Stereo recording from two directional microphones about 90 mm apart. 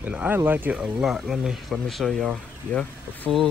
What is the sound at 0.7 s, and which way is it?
Speech, 5° right (ahead or behind).